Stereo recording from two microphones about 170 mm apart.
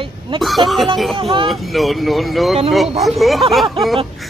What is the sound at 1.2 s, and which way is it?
Speech, 30° right (ahead or behind).